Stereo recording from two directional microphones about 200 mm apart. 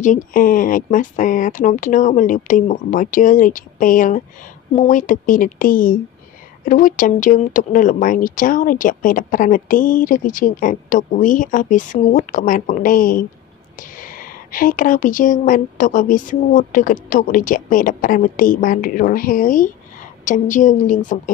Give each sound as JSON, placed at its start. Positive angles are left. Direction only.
{"t": 0.0, "sound": "a woman's voice", "side_deg": 40}